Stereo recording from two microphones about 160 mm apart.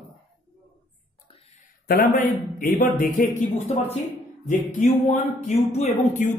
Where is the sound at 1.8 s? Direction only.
70° left (ahead or behind).